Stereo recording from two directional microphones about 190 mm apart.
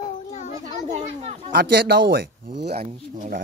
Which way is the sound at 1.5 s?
55° right (ahead or behind).